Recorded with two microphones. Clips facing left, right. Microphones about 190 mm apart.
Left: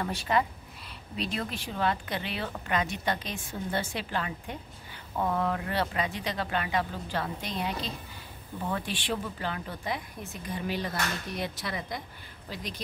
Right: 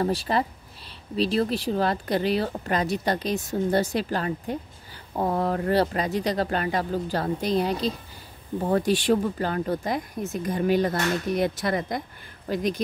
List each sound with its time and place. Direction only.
0.0 s speech: 35° right (ahead or behind)